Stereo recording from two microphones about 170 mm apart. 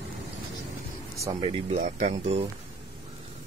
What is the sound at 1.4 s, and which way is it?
Speech, 35° right (ahead or behind).